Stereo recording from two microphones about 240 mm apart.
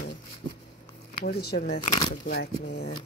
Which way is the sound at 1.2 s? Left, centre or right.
Left.